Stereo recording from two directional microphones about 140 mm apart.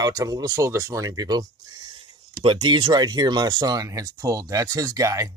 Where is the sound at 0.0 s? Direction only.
25° right (ahead or behind).